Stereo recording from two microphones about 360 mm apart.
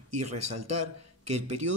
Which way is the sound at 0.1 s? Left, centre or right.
Right.